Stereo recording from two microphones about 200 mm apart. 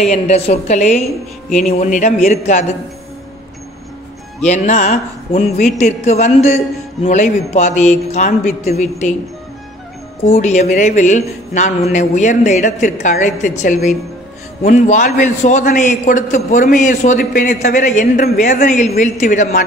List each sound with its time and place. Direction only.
0.0 s a man's voice: 35° left (ahead or behind)
4.4 s a man's voice: 35° left (ahead or behind)
10.3 s a man's voice: 35° left (ahead or behind)